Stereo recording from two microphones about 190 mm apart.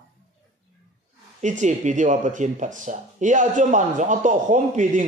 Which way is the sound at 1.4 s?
40° right (ahead or behind).